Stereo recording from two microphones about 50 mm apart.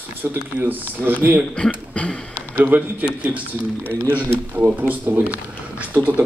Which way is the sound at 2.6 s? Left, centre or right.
Right.